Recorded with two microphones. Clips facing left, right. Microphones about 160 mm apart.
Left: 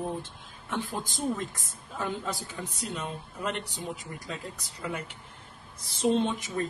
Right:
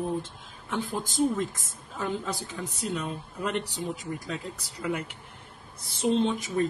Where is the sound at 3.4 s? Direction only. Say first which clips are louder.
Right 3 dB; 40° right (ahead or behind).